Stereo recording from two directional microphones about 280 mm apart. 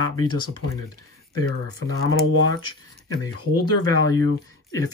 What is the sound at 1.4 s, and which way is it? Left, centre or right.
Speech, centre.